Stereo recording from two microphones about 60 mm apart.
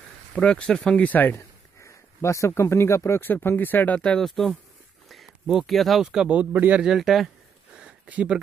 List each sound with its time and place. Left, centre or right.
0.3 s speech: centre
1.0 s speech: left
1.3 s speech: left
3.2 s speech: left
4.0 s speech: centre
5.1 s a sound: centre
5.7 s speech: centre
6.0 s speech: centre
7.0 s speech: centre
8.1 s speech: right